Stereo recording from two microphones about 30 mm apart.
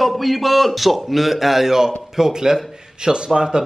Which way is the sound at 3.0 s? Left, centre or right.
Right.